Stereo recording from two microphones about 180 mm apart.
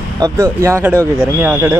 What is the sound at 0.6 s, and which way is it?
Speech, 15° right (ahead or behind).